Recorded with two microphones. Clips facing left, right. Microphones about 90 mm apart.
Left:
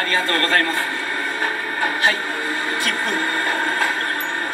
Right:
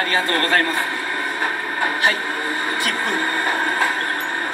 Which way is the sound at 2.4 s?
20° right (ahead or behind).